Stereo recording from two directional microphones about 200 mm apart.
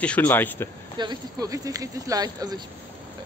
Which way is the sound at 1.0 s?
20° right (ahead or behind).